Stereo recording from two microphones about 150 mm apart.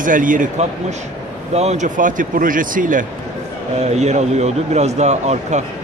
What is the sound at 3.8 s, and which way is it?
Speech, 50° right (ahead or behind).